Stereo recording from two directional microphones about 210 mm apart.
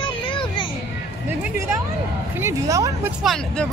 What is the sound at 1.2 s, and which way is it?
A woman's voice, 10° right (ahead or behind).